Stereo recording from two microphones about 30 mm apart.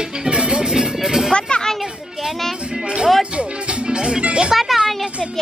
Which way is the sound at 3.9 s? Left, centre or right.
Right.